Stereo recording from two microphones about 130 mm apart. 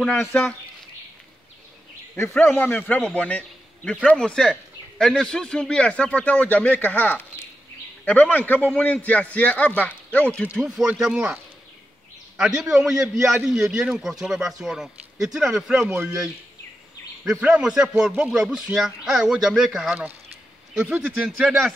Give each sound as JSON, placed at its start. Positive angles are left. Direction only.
{"t": 0.1, "sound": "a man's voice", "side_deg": 15}
{"t": 2.4, "sound": "a man's voice", "side_deg": 15}
{"t": 3.2, "sound": "a sound", "side_deg": 10}
{"t": 4.0, "sound": "a man's voice", "side_deg": 5}
{"t": 10.6, "sound": "speech", "side_deg": -5}
{"t": 12.4, "sound": "speech", "side_deg": -5}
{"t": 17.2, "sound": "speech", "side_deg": -5}
{"t": 21.2, "sound": "speech", "side_deg": 0}